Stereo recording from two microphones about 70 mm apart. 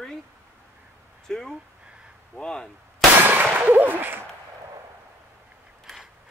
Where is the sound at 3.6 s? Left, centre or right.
Right.